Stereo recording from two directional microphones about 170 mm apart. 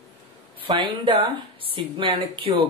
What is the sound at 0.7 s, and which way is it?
Speech, 30° right (ahead or behind).